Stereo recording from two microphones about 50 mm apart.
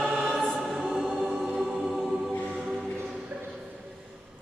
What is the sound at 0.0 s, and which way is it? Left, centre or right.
Choir, right.